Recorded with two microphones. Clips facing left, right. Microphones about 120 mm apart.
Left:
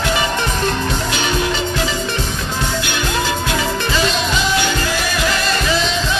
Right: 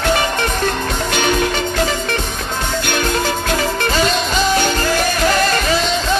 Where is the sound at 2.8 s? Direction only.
45° right (ahead or behind).